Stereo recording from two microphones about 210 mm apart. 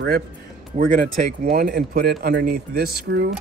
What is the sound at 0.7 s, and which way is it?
Speech, 45° right (ahead or behind).